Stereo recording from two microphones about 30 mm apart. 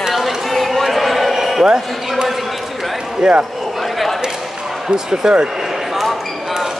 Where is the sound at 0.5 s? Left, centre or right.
Centre.